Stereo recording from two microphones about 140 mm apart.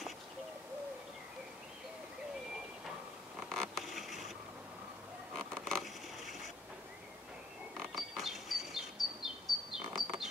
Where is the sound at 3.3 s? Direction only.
5° left (ahead or behind).